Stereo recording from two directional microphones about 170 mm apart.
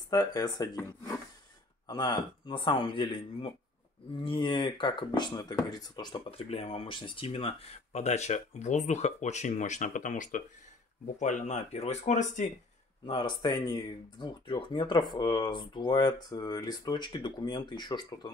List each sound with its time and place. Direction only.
0.1 s speech: 25° left (ahead or behind); by 12.4 s 45° left (ahead or behind)
13.0 s speech: 30° left (ahead or behind)